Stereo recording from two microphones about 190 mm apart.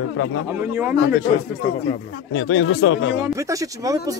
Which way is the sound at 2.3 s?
85° left.